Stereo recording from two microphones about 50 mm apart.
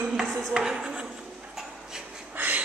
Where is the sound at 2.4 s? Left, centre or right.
Right.